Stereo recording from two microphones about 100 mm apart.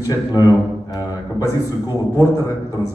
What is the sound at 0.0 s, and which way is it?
Speech, 35° left (ahead or behind).